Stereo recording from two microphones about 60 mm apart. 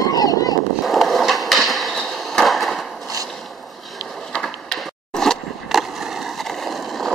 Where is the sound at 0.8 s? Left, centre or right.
Centre.